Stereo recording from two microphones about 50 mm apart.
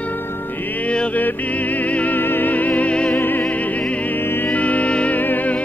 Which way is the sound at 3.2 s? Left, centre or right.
Left.